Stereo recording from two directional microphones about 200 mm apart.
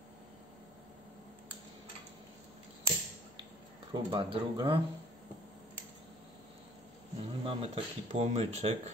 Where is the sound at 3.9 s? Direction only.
25° right (ahead or behind).